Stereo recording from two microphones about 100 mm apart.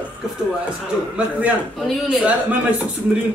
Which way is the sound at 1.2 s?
15° right (ahead or behind).